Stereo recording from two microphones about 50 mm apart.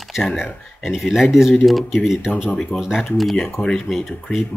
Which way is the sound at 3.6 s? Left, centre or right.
Left.